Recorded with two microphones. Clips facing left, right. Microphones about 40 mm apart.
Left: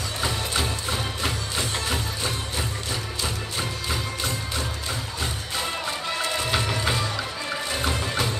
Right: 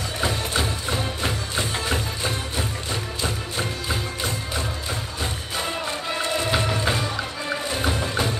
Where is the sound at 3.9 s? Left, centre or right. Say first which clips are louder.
Right 1 dB; centre.